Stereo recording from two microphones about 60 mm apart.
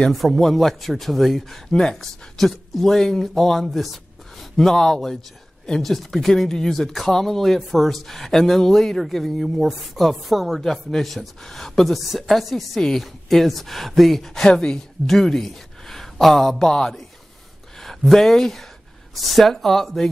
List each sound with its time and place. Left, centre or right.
0.1 s speech: centre
1.8 s speech: centre
2.3 s speech: centre
14.5 s speech: centre
15.0 s speech: centre